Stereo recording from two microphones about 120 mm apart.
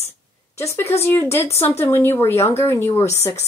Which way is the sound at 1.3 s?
20° left (ahead or behind).